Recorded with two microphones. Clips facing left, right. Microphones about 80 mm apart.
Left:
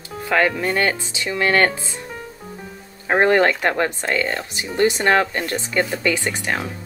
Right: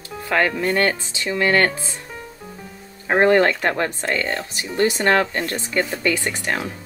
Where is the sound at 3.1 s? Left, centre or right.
Left.